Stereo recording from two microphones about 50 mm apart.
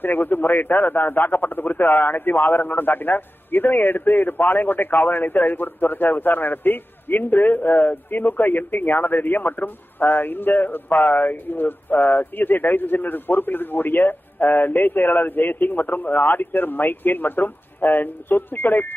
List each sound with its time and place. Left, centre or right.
0.0 s speech: left